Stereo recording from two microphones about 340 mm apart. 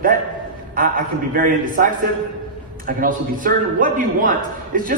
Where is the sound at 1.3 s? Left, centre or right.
Right.